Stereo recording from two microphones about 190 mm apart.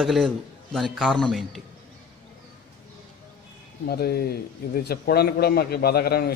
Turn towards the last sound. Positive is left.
turn(degrees=55)  # may be behind; listen again after turning